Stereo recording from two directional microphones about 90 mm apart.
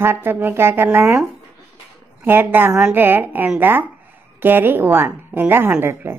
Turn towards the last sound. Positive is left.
turn(degrees=-25)  # may be behind; listen again after turning